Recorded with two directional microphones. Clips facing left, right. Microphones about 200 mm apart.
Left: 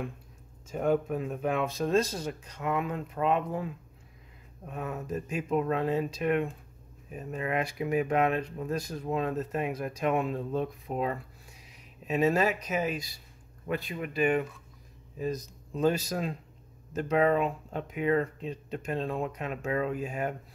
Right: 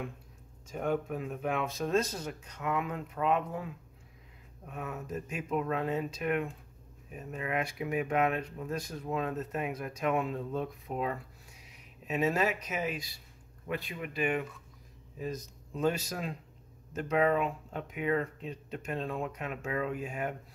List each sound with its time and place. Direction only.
0.7 s speech: 40° left (ahead or behind)
4.6 s speech: 35° left (ahead or behind)